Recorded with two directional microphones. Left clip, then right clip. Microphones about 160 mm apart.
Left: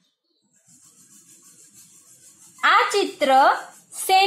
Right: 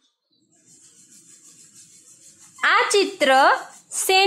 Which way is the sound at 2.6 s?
25° right (ahead or behind).